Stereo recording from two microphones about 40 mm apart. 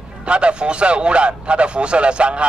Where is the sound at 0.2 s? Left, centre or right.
Right.